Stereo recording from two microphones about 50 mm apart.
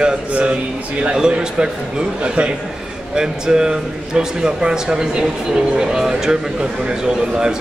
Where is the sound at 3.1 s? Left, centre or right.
Centre.